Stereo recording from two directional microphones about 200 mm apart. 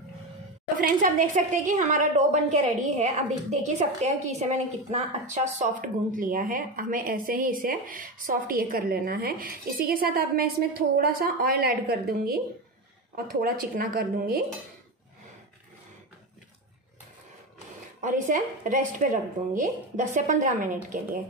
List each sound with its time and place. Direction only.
0.7 s a woman's voice: 45° right (ahead or behind)
18.0 s a woman's voice: 40° right (ahead or behind)